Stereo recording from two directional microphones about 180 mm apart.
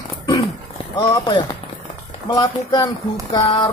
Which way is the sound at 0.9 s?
25° left (ahead or behind).